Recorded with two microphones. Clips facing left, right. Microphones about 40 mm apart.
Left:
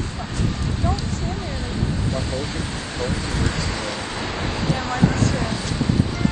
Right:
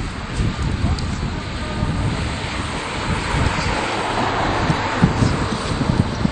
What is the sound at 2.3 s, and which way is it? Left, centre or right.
Vehicle, right.